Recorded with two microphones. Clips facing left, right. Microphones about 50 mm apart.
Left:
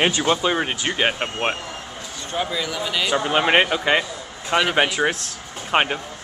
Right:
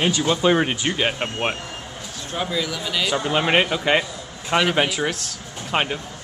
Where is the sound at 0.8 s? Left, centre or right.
Centre.